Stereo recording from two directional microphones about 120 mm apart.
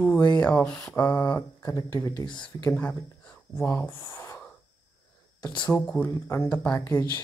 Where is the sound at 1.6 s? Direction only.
30° left (ahead or behind).